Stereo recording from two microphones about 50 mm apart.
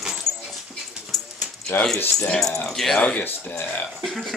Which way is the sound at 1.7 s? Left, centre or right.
Left.